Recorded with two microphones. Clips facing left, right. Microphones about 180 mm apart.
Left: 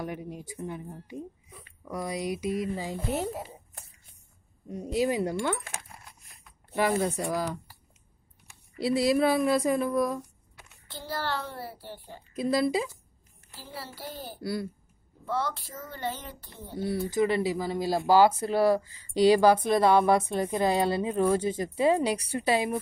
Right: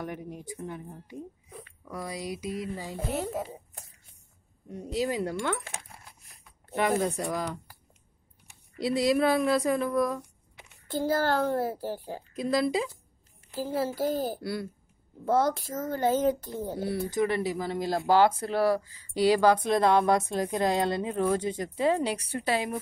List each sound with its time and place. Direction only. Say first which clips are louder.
0.0 s speech: left 1 dB; 10° left (ahead or behind)
4.7 s speech: left 2 dB; 15° left (ahead or behind)
6.7 s speech: even; 5° left (ahead or behind)
8.7 s speech: left 1 dB; 5° left (ahead or behind)
10.9 s speech: right 8 dB; 45° right (ahead or behind)
12.4 s speech: left 1 dB; 5° left (ahead or behind)
13.6 s speech: right 13 dB; 45° right (ahead or behind)
16.8 s speech: left 3 dB; 5° left (ahead or behind)